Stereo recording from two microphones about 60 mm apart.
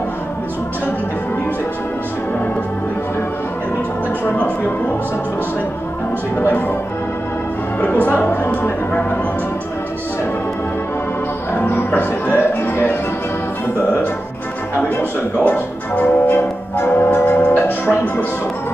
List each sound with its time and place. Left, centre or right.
4.3 s music: left
6.3 s music: left
7.8 s music: left
11.5 s music: left
15.0 s speech: left
16.8 s music: left